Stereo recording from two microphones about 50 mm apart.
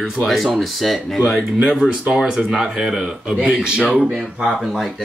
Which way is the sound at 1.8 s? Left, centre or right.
Centre.